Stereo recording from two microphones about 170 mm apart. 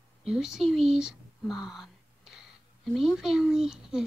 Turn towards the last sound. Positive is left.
turn(degrees=-5)  # may be behind; listen again after turning